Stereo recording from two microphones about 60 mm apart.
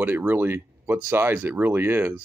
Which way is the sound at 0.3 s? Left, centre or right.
Right.